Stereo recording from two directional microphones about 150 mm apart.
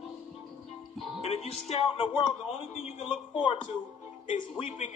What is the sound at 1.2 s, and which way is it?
Speech, 40° left (ahead or behind).